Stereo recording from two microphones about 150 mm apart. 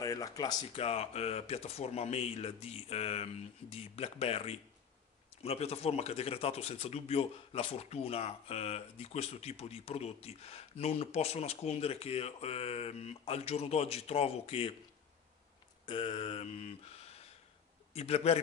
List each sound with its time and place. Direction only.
0.0 s speech: 25° left (ahead or behind)
0.8 s speech: 45° left (ahead or behind)
15.8 s speech: 30° left (ahead or behind)